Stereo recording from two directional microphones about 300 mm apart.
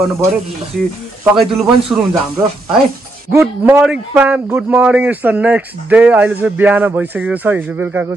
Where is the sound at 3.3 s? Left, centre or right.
Centre.